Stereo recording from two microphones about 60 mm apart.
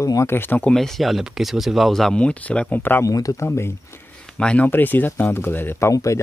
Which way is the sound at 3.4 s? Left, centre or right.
Left.